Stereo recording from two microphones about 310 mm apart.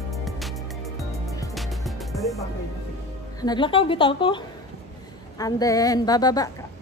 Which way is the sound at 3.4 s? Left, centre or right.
Centre.